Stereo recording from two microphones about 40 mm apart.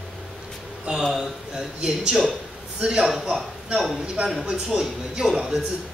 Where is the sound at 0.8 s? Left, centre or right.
Centre.